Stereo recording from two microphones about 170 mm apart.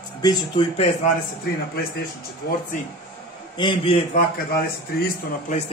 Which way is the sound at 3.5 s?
25° left (ahead or behind).